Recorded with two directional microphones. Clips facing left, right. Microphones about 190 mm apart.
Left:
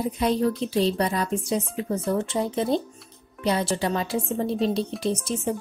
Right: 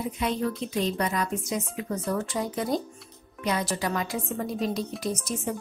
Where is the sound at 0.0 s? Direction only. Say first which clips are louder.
Left 5 dB; 35° left (ahead or behind).